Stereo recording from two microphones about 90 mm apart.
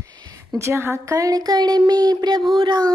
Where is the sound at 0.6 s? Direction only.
30° right (ahead or behind); by 2.4 s 50° right (ahead or behind).